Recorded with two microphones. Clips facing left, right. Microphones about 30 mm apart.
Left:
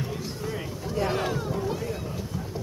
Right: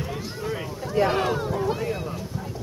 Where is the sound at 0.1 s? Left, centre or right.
Centre.